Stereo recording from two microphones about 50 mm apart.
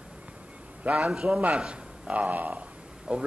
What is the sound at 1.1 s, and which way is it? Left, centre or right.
A man's voice, centre.